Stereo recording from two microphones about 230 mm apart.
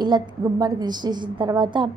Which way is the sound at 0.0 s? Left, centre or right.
Centre.